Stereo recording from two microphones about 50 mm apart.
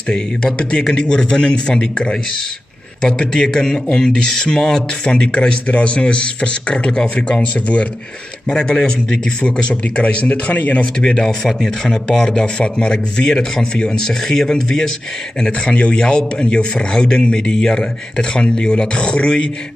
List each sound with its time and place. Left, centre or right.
0.6 s speech: centre